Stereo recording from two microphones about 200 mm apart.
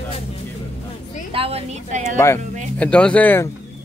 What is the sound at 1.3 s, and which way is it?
Speech, 30° right (ahead or behind).